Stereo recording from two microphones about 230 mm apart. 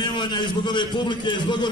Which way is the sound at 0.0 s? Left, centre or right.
Centre.